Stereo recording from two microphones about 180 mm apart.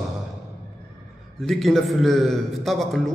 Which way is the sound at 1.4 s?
Centre (ahead or behind).